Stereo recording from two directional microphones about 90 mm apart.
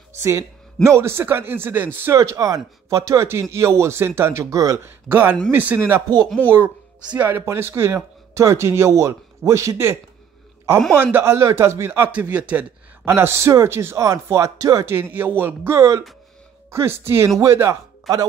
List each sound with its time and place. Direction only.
0.1 s a man's voice: 30° right (ahead or behind)
2.1 s speech: 35° right (ahead or behind)
4.7 s a man's voice: 20° right (ahead or behind)
6.2 s speech: 10° left (ahead or behind)
7.2 s speech: 20° right (ahead or behind)
11.0 s a man's voice: 25° right (ahead or behind)
12.1 s a man's voice: 15° right (ahead or behind)
13.1 s speech: 30° right (ahead or behind)
14.9 s a man's voice: 25° right (ahead or behind)